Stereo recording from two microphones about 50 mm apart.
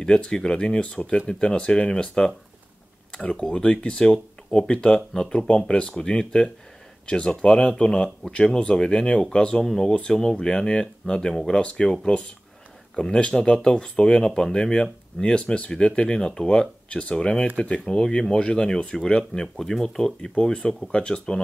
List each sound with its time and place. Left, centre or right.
0.0 s speech: centre